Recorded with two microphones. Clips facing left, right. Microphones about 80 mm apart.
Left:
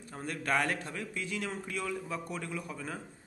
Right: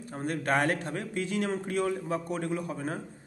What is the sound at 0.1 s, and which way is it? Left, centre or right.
A man's voice, right.